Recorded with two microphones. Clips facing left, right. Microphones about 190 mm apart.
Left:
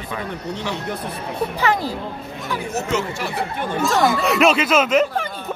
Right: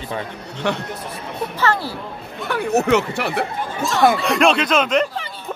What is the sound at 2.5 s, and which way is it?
Speech, 65° right (ahead or behind).